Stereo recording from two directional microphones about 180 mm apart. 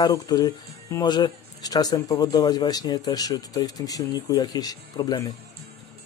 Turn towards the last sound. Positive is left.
turn(degrees=20)  # may be behind; listen again after turning